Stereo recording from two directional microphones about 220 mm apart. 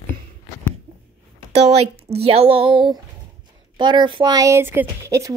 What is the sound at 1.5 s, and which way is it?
A child's voice, 30° right (ahead or behind).